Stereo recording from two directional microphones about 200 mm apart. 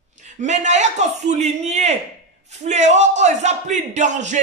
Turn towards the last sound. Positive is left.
turn(degrees=-35)  # may be behind; listen again after turning